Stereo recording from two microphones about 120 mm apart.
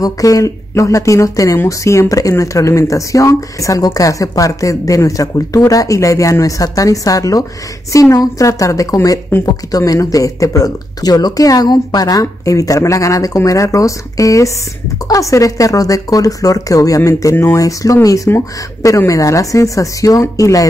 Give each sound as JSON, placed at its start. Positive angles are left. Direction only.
{"t": 0.0, "sound": "speech", "side_deg": 30}